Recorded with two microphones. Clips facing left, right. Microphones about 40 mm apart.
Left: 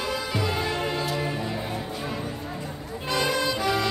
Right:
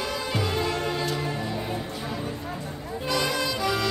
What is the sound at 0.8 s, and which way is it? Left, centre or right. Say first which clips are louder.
Music: even; centre.